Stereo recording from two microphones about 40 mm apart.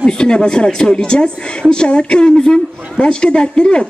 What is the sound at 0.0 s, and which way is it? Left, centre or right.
A woman's voice, left.